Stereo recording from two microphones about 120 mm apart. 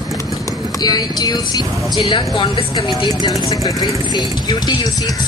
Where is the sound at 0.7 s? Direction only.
35° left (ahead or behind).